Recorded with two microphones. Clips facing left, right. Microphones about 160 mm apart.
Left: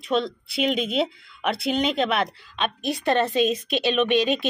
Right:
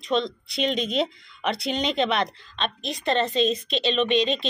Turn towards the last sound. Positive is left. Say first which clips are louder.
# left 1 dB
turn(degrees=10)  # may be behind; listen again after turning